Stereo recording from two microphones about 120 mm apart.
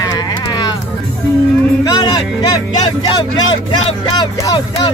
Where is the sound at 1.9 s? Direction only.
35° left (ahead or behind).